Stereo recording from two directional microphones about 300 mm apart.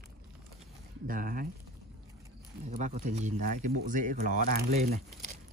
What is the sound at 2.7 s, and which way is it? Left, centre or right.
Speech, right.